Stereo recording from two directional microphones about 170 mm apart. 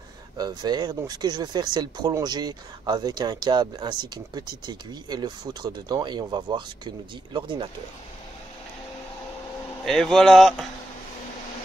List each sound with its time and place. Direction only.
0.4 s speech: 25° right (ahead or behind)
9.8 s speech: centre (ahead or behind)